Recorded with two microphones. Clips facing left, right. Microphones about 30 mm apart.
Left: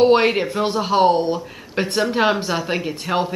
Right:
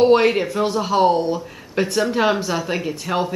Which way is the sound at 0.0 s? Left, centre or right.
Centre.